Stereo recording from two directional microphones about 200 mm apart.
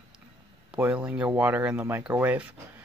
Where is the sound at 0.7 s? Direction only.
5° right (ahead or behind).